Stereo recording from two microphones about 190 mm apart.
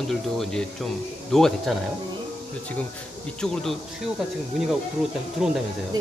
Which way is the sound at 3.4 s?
Centre (ahead or behind).